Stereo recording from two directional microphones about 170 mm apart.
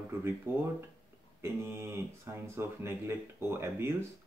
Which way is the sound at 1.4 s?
15° right (ahead or behind).